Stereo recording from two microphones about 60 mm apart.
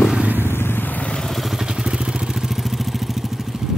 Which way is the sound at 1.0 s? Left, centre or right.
Centre.